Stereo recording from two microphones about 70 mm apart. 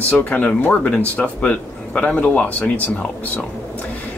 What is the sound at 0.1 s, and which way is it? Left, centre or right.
Speech, left.